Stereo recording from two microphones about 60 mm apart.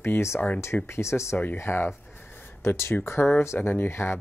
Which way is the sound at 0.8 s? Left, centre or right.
Left.